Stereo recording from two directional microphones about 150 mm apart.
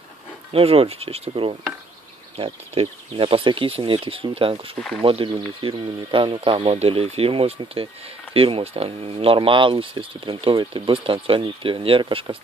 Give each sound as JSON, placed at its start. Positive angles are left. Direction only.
{"t": 0.5, "sound": "speech", "side_deg": -40}